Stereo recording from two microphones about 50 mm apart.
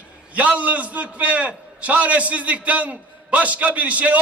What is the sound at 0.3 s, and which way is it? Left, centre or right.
A man's voice, right.